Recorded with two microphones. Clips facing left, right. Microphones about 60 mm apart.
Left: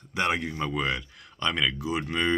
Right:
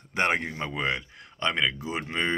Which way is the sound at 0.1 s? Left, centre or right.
Right.